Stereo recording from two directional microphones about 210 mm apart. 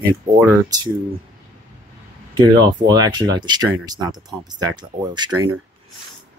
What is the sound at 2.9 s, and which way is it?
Speech, 20° right (ahead or behind).